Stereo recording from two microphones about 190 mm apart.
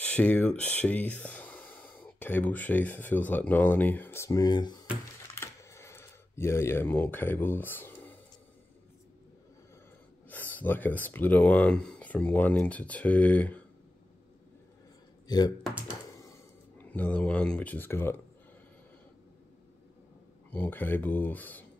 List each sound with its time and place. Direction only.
0.0 s speech: 5° left (ahead or behind); by 4.8 s 20° left (ahead or behind)
5.3 s a sound: 15° left (ahead or behind)
10.3 s speech: 10° left (ahead or behind)
15.2 s speech: 20° left (ahead or behind)
20.5 s speech: 10° left (ahead or behind)